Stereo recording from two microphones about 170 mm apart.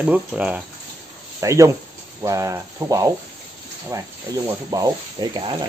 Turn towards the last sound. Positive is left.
turn(degrees=-25)  # may be behind; listen again after turning